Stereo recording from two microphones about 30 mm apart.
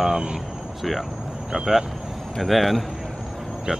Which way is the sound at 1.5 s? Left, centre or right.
Centre.